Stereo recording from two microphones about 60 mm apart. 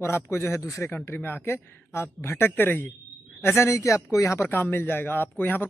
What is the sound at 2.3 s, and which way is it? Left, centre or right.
Speech, left.